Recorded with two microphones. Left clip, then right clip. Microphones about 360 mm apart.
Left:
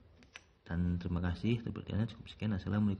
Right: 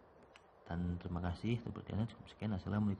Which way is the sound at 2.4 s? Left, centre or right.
Centre.